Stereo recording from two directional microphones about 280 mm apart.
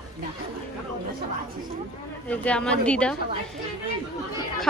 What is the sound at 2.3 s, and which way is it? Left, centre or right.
Speech, centre.